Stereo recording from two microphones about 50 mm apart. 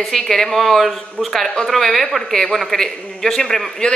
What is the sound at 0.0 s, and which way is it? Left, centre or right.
A man's voice, centre.